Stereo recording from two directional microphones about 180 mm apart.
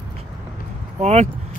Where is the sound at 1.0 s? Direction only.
40° right (ahead or behind).